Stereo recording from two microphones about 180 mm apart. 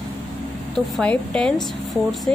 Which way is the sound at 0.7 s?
5° left (ahead or behind).